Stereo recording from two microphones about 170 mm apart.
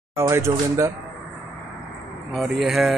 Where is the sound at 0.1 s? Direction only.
15° right (ahead or behind).